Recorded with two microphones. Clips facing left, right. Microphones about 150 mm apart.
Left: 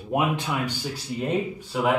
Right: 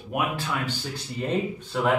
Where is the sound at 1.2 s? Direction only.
5° left (ahead or behind).